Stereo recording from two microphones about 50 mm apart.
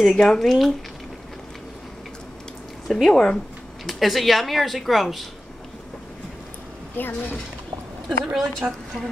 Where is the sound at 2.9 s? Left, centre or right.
Centre.